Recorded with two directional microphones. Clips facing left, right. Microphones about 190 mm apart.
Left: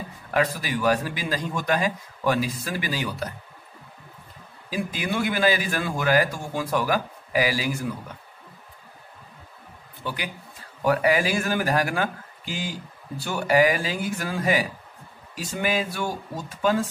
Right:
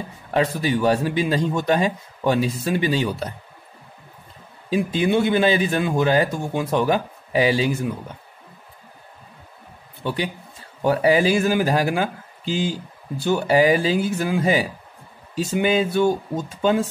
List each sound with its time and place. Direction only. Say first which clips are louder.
0.3 s a man's voice: right 4 dB; 25° right (ahead or behind)
4.6 s a man's voice: right 8 dB; 25° right (ahead or behind)
10.0 s a man's voice: right 7 dB; 30° right (ahead or behind)